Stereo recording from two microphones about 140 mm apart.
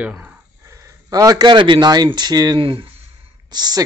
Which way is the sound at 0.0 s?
10° right (ahead or behind).